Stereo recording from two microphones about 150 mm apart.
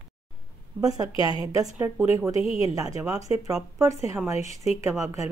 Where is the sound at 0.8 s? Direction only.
25° right (ahead or behind).